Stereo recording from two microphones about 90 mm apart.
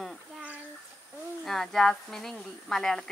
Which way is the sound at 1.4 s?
5° left (ahead or behind).